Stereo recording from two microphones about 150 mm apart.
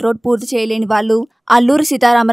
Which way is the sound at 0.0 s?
Centre (ahead or behind).